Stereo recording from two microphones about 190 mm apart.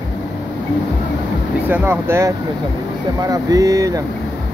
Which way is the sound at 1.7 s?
10° right (ahead or behind).